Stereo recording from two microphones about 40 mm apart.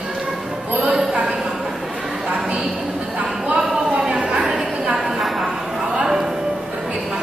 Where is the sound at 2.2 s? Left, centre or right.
Right.